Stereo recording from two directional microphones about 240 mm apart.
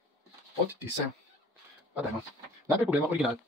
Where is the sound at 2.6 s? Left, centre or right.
Centre.